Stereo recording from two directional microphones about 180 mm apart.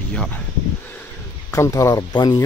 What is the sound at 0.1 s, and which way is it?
Speech, 5° left (ahead or behind).